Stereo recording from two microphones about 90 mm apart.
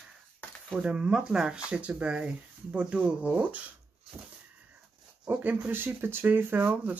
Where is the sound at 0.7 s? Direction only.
10° right (ahead or behind).